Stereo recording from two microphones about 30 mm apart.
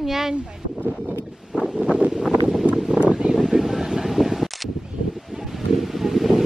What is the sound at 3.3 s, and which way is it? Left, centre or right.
Vehicle, centre.